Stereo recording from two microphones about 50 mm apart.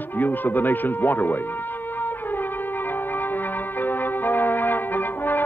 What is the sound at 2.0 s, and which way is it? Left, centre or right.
Music, left.